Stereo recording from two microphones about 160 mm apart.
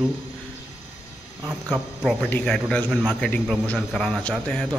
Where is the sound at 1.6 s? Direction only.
5° left (ahead or behind).